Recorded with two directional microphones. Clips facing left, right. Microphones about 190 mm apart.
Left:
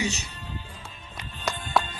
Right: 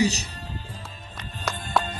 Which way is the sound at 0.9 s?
40° right (ahead or behind).